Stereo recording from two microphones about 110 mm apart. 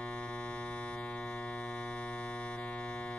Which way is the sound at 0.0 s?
10° left (ahead or behind).